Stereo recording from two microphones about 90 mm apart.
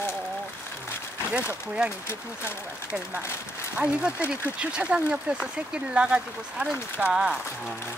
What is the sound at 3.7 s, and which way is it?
Speech, 15° right (ahead or behind).